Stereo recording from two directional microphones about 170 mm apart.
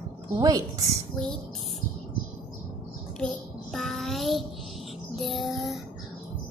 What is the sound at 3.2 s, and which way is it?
Child singing, centre (ahead or behind).